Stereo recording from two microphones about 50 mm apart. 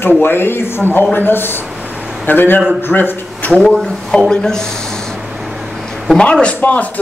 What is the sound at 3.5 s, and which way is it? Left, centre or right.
Speech, centre.